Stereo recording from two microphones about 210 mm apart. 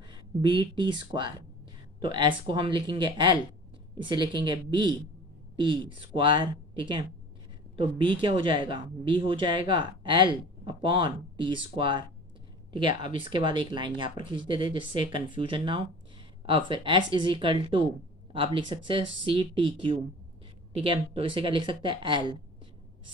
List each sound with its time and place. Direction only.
0.0 s speech: 20° right (ahead or behind)
13.2 s speech: 25° right (ahead or behind)